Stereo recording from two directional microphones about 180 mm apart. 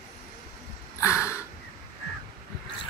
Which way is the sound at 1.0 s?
15° left (ahead or behind).